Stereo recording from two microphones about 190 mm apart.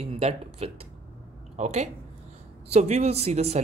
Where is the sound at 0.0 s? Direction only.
30° right (ahead or behind).